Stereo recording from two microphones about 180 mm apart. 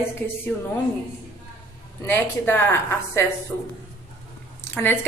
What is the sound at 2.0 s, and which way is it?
A woman's voice, 10° left (ahead or behind).